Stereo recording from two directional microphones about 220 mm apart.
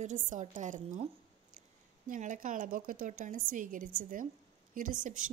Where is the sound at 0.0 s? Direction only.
35° right (ahead or behind).